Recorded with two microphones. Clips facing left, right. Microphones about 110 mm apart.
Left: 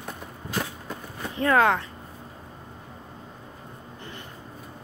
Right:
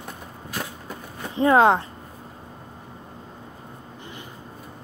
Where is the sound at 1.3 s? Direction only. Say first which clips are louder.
Right 4 dB; 25° right (ahead or behind).